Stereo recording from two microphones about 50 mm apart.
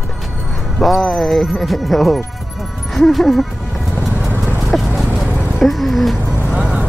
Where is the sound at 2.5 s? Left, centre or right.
Centre.